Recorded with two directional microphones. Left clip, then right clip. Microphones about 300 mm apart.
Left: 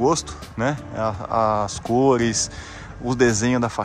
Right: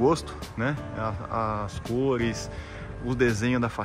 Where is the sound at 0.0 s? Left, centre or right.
Centre.